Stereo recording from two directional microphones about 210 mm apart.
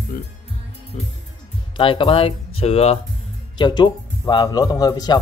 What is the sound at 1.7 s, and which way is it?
Speech, 25° left (ahead or behind).